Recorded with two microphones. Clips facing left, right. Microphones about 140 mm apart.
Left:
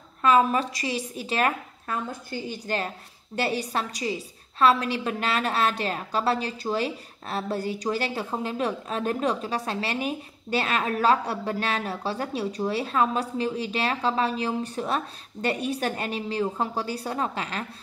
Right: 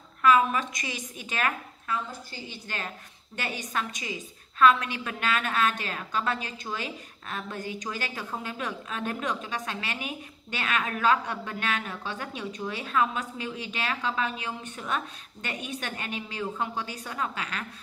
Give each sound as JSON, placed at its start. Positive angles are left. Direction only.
{"t": 0.2, "sound": "a woman's voice", "side_deg": 35}